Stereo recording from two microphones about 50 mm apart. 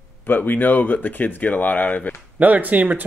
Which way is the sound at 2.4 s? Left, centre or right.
Right.